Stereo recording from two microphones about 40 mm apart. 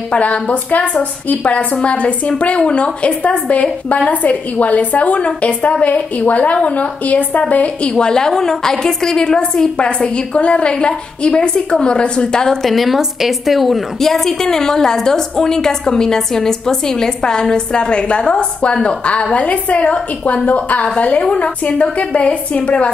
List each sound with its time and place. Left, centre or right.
0.1 s a woman's voice: left
12.6 s a woman's voice: centre; by 22.8 s left